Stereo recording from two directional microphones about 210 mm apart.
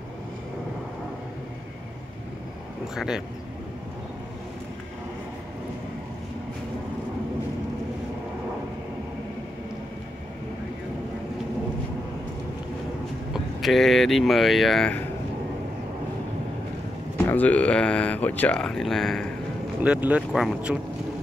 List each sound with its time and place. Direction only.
13.3 s speech: centre (ahead or behind)
17.3 s speech: 5° left (ahead or behind)